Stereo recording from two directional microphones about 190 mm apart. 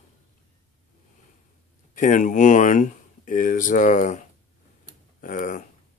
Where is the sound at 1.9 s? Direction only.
40° left (ahead or behind).